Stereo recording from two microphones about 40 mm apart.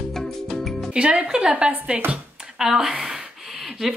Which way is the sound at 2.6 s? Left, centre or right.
Centre.